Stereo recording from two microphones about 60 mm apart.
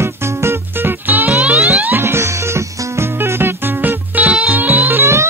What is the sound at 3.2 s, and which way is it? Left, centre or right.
Music, right.